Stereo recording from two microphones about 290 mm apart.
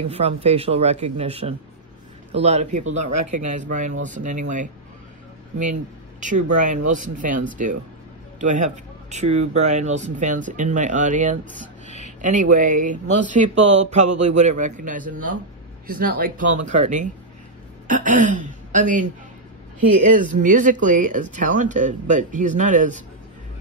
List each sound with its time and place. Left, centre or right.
0.1 s speech: right
6.4 s speech: right